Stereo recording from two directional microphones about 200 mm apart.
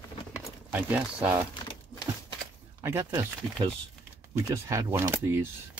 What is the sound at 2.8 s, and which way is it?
Speech, 15° right (ahead or behind).